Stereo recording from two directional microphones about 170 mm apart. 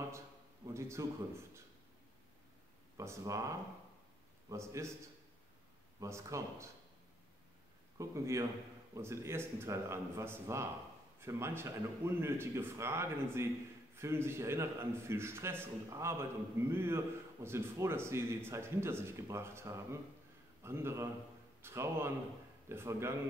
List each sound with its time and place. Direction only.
0.7 s a man's voice: 15° right (ahead or behind)
3.0 s a man's voice: 20° right (ahead or behind)
5.9 s a man's voice: 20° right (ahead or behind)
8.0 s a man's voice: 15° right (ahead or behind)